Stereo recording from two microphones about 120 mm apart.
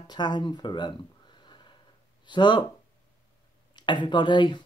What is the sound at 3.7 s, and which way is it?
Speech, 40° left (ahead or behind).